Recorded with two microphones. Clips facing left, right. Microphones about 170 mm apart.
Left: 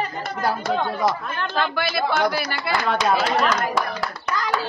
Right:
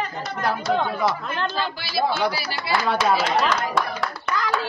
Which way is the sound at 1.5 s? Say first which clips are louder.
Left 3 dB; 60° left (ahead or behind).